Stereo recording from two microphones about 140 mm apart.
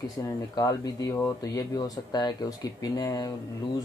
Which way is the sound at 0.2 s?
25° left (ahead or behind).